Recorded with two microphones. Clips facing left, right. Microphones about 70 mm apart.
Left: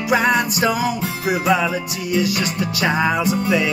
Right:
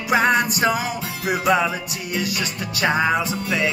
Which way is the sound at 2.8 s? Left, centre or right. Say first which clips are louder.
Even; centre.